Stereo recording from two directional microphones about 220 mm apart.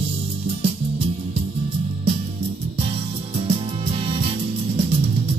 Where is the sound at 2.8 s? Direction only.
25° right (ahead or behind).